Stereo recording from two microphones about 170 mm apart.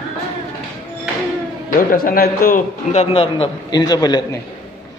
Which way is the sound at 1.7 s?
55° left (ahead or behind).